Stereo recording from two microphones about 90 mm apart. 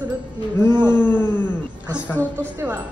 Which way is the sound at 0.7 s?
55° right (ahead or behind).